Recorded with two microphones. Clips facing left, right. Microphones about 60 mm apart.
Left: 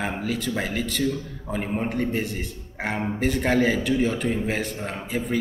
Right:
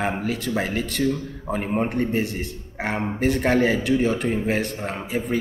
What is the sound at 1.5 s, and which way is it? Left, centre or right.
Speech, centre.